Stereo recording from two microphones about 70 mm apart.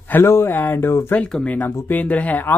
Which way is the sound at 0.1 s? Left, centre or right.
Left.